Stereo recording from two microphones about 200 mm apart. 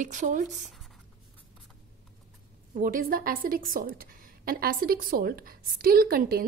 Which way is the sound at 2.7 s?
40° right (ahead or behind).